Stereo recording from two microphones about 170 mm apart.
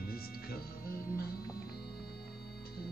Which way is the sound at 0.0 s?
60° left (ahead or behind).